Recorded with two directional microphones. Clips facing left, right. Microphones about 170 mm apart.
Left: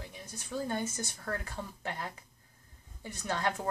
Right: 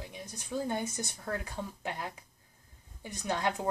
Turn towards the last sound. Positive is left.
turn(degrees=-15)  # may be behind; listen again after turning